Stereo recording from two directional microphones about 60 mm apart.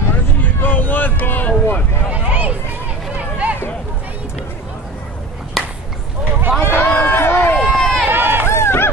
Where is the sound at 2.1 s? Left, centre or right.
Right.